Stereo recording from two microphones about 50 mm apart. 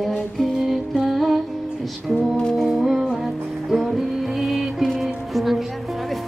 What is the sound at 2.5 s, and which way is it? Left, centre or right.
Music, centre.